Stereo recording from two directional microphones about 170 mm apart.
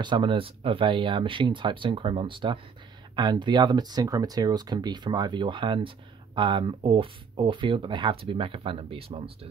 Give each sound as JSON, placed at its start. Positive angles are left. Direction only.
{"t": 0.0, "sound": "speech", "side_deg": -30}